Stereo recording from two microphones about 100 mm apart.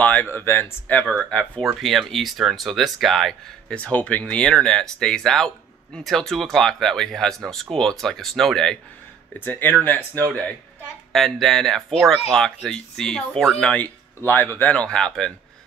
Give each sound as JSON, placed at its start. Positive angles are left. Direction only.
{"t": 0.0, "sound": "speech", "side_deg": 15}
{"t": 1.0, "sound": "speech", "side_deg": 0}
{"t": 3.7, "sound": "speech", "side_deg": 15}
{"t": 9.4, "sound": "speech", "side_deg": 20}
{"t": 11.1, "sound": "speech", "side_deg": 0}
{"t": 14.2, "sound": "speech", "side_deg": 20}